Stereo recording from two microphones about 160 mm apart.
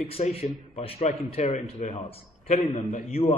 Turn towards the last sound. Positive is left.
turn(degrees=40)  # may be behind; listen again after turning